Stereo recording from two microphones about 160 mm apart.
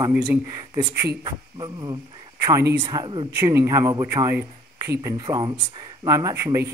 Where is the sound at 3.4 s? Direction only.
20° right (ahead or behind).